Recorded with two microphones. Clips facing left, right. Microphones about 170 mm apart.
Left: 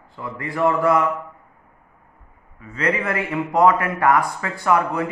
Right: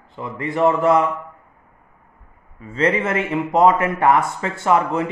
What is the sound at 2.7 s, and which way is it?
A man's voice, 25° right (ahead or behind).